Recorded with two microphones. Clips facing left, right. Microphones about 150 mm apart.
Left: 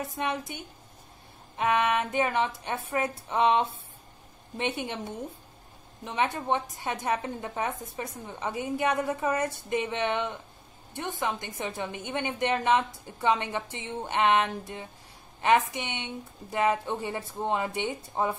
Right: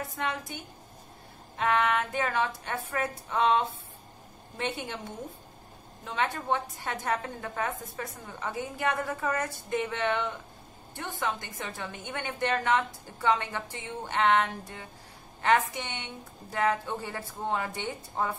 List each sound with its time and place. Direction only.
0.0 s a woman's voice: 20° left (ahead or behind)
6.0 s a woman's voice: 15° left (ahead or behind)